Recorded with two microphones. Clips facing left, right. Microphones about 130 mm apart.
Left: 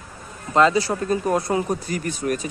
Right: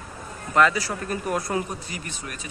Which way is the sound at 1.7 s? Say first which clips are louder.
Left 10 dB; 40° left (ahead or behind).